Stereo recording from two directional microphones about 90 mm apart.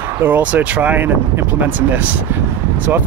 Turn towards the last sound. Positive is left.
turn(degrees=-25)  # may be behind; listen again after turning